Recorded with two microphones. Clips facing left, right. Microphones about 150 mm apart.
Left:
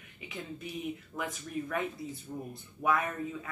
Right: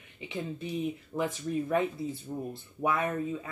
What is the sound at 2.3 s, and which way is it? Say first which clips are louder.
Speech: right 4 dB; 20° right (ahead or behind).